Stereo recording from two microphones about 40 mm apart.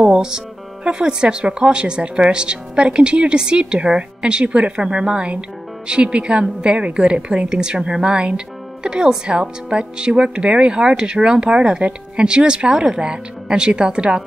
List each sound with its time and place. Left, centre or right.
0.0 s speech: centre